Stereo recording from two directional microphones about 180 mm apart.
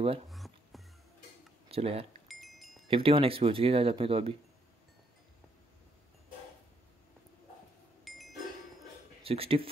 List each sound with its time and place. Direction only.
0.3 s a sound: centre (ahead or behind)
1.7 s speech: 35° right (ahead or behind)
2.2 s wind chime: centre (ahead or behind)
2.9 s speech: 30° right (ahead or behind)
8.0 s chink: centre (ahead or behind)
9.2 s speech: 30° right (ahead or behind)